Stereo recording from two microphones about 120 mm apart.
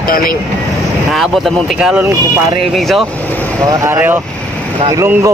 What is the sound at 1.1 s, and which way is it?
Speech, centre (ahead or behind).